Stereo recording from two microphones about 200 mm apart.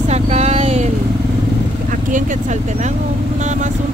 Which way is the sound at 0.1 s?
35° right (ahead or behind).